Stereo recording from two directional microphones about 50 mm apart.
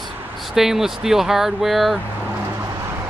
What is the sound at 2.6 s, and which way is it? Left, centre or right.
Music, right.